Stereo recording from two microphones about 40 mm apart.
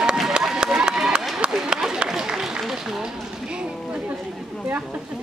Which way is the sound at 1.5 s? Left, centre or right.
Centre.